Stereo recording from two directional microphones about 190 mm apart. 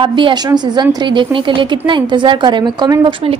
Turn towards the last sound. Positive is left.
turn(degrees=-25)  # may be behind; listen again after turning